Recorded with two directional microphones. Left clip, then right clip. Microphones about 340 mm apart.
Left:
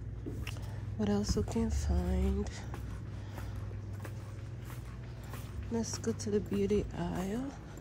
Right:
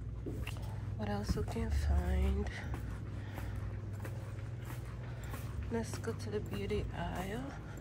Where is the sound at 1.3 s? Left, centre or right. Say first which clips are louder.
Left 5 dB; centre.